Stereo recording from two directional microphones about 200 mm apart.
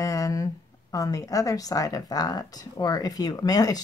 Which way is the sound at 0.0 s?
15° left (ahead or behind).